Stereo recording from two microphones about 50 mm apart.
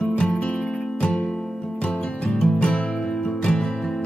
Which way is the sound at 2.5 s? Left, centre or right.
Left.